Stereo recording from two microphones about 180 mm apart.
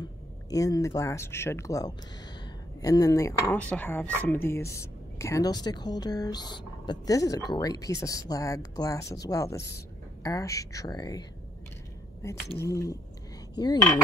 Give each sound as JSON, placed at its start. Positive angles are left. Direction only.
{"t": 0.0, "sound": "speech", "side_deg": 20}